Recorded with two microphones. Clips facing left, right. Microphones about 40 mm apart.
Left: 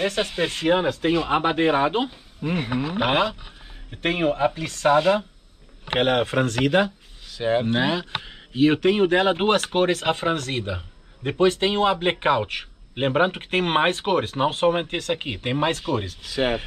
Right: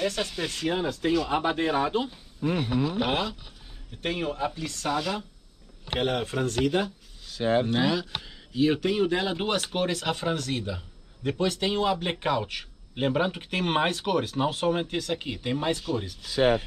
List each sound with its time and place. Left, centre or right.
0.0 s speech: left
7.3 s speech: left